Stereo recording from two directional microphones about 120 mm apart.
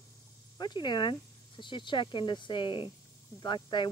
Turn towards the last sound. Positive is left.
turn(degrees=40)  # may be behind; listen again after turning